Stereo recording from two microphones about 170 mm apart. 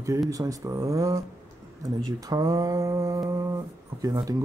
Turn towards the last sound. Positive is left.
turn(degrees=-20)  # may be behind; listen again after turning